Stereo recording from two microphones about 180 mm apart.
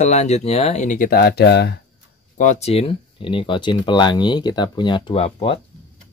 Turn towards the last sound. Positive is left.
turn(degrees=30)  # may be behind; listen again after turning